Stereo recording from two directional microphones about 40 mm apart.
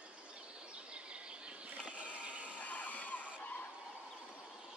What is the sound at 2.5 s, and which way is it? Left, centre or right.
Vehicle, left.